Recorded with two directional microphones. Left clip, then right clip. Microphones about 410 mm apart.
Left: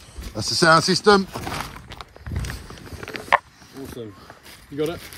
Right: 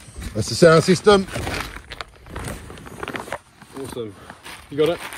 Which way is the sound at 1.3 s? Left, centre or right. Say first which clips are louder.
Right 2 dB; centre.